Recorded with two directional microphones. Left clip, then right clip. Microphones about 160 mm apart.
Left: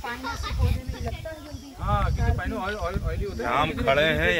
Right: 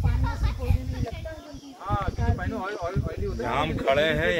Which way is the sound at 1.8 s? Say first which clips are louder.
Left 2 dB; 15° right (ahead or behind).